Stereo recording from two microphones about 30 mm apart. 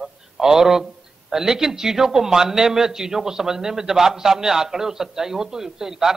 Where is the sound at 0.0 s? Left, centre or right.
Centre.